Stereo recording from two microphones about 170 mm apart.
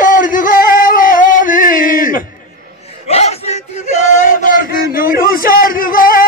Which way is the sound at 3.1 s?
40° left (ahead or behind).